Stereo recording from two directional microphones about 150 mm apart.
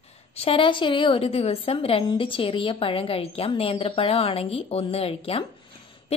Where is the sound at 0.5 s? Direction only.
35° left (ahead or behind).